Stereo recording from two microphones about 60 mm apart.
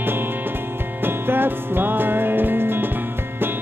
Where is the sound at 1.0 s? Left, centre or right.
Right.